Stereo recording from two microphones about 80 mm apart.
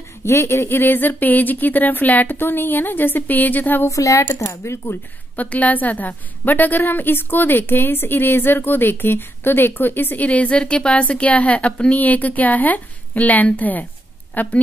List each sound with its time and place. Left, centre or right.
0.2 s a woman's voice: left
3.9 s speech: left
5.3 s a woman's voice: centre